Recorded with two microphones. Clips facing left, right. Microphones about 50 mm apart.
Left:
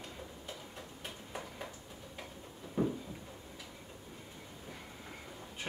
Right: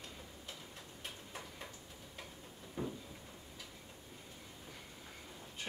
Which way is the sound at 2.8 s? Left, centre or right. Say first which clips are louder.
Left 8 dB; left.